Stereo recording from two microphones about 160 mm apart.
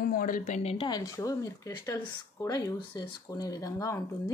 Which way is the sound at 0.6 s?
40° left (ahead or behind).